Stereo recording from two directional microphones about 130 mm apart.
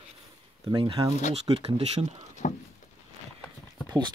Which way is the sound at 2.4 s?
90° left.